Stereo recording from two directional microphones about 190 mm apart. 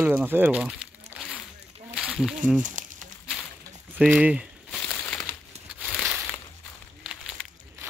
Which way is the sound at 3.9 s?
5° right (ahead or behind).